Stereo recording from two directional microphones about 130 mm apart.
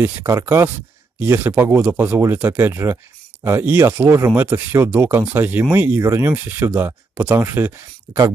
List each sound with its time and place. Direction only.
0.0 s speech: 20° right (ahead or behind)